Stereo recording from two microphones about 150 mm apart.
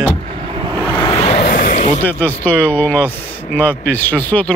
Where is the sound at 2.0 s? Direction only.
10° left (ahead or behind).